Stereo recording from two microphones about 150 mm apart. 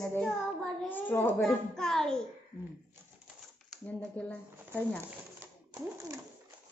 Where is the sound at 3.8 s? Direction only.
10° left (ahead or behind).